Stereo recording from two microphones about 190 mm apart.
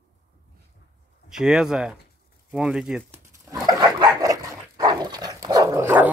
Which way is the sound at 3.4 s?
20° right (ahead or behind).